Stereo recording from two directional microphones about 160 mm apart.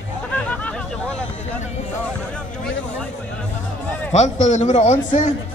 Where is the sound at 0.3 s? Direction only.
10° left (ahead or behind).